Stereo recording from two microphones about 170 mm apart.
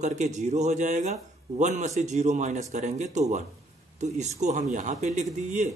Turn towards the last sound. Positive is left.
turn(degrees=-45)  # may be behind; listen again after turning